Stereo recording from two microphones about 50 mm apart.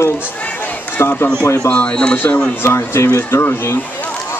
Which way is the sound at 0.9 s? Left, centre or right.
Left.